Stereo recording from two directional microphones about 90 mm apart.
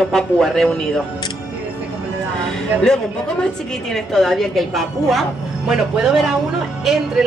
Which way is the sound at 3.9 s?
Centre (ahead or behind).